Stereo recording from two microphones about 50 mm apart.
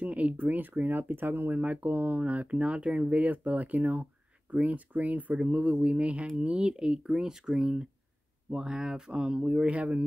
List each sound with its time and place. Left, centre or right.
0.0 s speech: right
1.6 s speech: right